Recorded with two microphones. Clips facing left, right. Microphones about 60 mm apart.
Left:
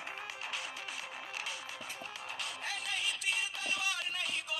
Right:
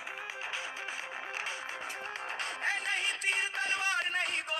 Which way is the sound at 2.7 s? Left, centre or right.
Right.